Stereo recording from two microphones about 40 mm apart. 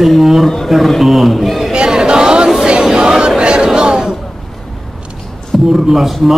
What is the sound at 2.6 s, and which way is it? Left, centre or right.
Music, right.